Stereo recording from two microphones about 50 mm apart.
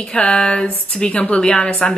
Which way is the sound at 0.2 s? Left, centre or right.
Centre.